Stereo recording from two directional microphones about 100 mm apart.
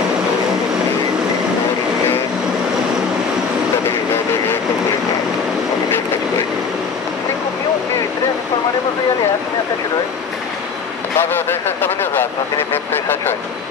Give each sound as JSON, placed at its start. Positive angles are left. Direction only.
{"t": 11.1, "sound": "vehicle", "side_deg": 20}
{"t": 12.7, "sound": "speech", "side_deg": 20}